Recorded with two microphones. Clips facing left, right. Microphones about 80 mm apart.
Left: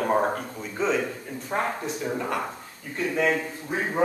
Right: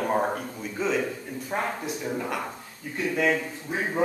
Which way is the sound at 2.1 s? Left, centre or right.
Centre.